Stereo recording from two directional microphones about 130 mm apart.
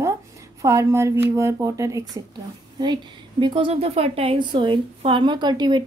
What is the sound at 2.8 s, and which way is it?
A woman's voice, 35° right (ahead or behind).